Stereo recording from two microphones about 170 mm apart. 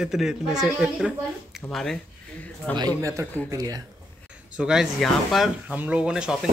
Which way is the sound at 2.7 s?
20° right (ahead or behind).